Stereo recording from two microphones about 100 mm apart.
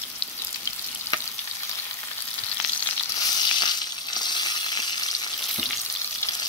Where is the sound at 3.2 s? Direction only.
45° left (ahead or behind).